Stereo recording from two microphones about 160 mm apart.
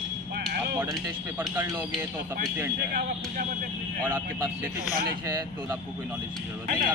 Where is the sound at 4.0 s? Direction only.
15° right (ahead or behind).